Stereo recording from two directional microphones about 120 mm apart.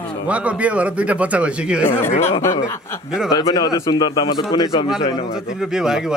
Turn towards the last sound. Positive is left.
turn(degrees=-5)  # may be behind; listen again after turning